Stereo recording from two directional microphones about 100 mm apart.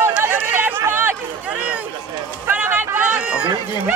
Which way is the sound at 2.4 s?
20° right (ahead or behind).